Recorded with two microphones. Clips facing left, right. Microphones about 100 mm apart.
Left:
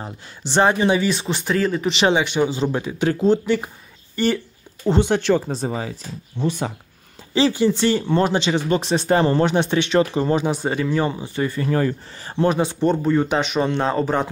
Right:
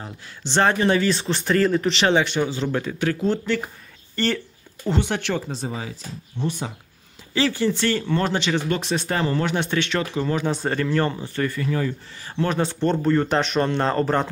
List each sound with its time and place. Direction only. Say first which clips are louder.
0.4 s speech: left 2 dB; 15° left (ahead or behind)
2.4 s speech: left 3 dB; 20° left (ahead or behind)
3.1 s speech: left 6 dB; 25° left (ahead or behind); by 4.4 s 10° left (ahead or behind)
4.8 s speech: left 6 dB; 25° left (ahead or behind)
5.7 s speech: left 5 dB; 45° left (ahead or behind)
7.3 s speech: left 4 dB; 20° left (ahead or behind)
10.4 s speech: left 2 dB; 10° left (ahead or behind)
11.4 s speech: left 2 dB; 30° left (ahead or behind)
11.7 s speech: left 4 dB; 50° left (ahead or behind)
12.5 s speech: left 3 dB; 10° left (ahead or behind)